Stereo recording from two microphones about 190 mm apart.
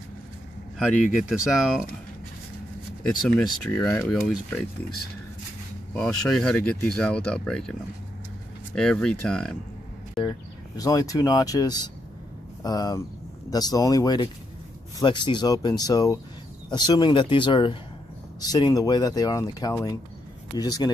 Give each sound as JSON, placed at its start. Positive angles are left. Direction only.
{"t": 0.7, "sound": "speech", "side_deg": -5}
{"t": 3.0, "sound": "speech", "side_deg": 5}
{"t": 5.9, "sound": "speech", "side_deg": 5}
{"t": 8.7, "sound": "speech", "side_deg": 5}
{"t": 10.8, "sound": "speech", "side_deg": 20}